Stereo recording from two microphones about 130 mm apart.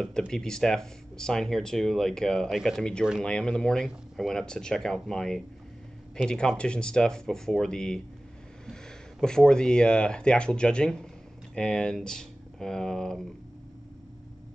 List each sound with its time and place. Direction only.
0.3 s speech: 5° left (ahead or behind)
9.2 s speech: 5° left (ahead or behind)